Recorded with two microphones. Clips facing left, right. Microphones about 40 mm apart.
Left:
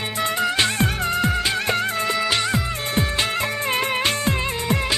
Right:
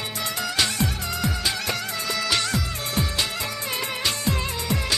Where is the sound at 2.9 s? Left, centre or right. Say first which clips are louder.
Left 4 dB; left.